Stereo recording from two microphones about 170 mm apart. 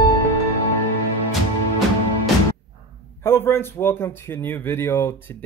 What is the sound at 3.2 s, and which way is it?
Speech, 15° left (ahead or behind).